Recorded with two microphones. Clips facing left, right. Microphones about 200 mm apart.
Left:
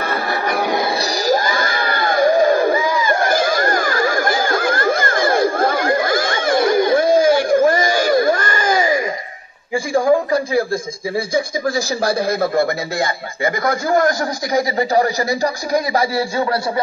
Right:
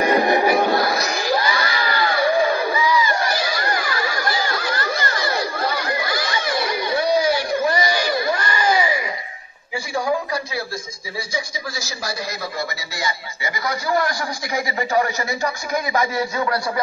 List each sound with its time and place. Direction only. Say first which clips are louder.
0.0 s music: right 5 dB; 15° right (ahead or behind)
0.7 s music: even; 20° left (ahead or behind)
0.9 s a sound: left 4 dB; 35° left (ahead or behind)
9.9 s speech: left 8 dB; 50° left (ahead or behind); by 16.8 s 30° left (ahead or behind)